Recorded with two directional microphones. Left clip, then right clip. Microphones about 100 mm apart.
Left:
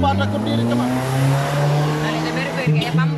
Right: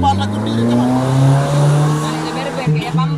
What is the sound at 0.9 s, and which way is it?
Vehicle, 25° right (ahead or behind).